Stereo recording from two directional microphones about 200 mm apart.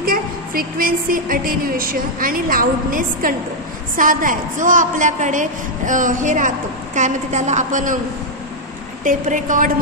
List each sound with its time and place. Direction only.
0.0 s a sound: 45° right (ahead or behind)
3.9 s a woman's voice: 45° right (ahead or behind)
9.0 s a woman's voice: 40° right (ahead or behind)